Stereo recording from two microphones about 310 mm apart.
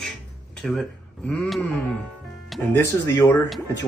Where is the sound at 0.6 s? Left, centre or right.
Centre.